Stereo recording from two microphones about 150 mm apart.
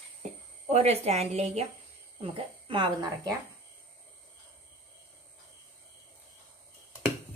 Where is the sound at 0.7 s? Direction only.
45° right (ahead or behind).